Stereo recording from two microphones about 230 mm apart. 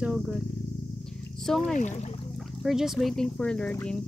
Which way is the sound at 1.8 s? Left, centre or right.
Left.